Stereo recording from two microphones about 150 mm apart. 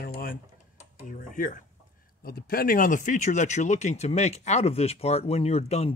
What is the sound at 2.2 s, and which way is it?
Speech, 85° left.